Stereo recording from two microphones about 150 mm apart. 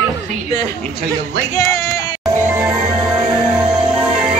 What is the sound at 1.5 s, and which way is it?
Speech, 20° left (ahead or behind).